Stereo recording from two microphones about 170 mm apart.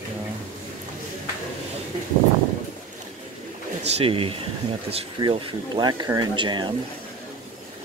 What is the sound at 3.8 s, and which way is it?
Speech, 35° right (ahead or behind).